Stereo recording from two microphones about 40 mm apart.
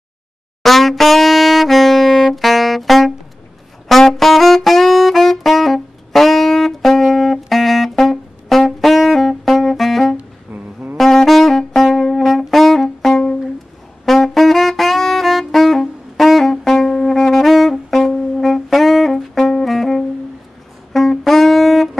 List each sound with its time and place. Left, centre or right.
0.6 s saxophone: centre
10.5 s music: right
11.0 s saxophone: centre
13.0 s music: centre
14.0 s saxophone: centre